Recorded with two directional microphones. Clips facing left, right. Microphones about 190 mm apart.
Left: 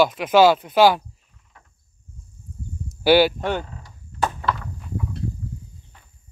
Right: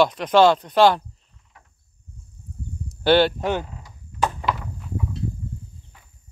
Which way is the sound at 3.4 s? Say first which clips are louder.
Right 1 dB; 5° right (ahead or behind).